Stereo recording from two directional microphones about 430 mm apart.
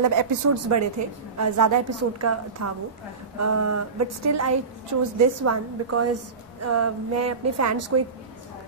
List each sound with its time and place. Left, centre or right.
0.0 s a woman's voice: right